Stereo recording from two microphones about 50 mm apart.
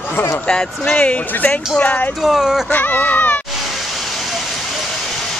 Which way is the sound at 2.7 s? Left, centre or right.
Left.